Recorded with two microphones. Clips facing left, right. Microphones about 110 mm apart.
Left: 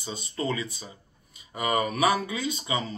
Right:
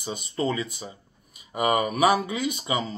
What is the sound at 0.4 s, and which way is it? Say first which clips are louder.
Speech: right 3 dB; 20° right (ahead or behind).